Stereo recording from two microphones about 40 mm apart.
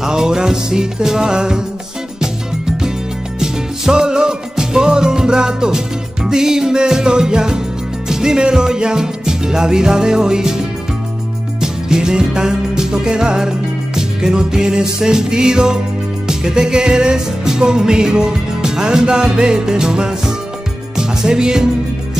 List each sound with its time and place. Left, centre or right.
0.0 s music: centre
3.3 s music: centre
11.6 s music: centre